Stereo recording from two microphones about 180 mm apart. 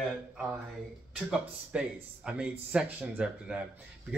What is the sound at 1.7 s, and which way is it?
Speech, 5° right (ahead or behind).